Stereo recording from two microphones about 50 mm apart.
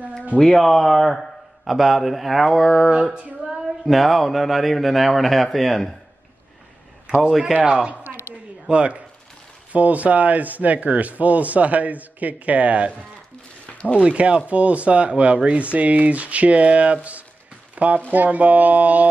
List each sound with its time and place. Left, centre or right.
0.4 s a man's voice: centre
2.9 s speech: centre
3.8 s a man's voice: centre
7.2 s a man's voice: centre
7.6 s speech: centre
13.7 s a sound: left
13.9 s speech: right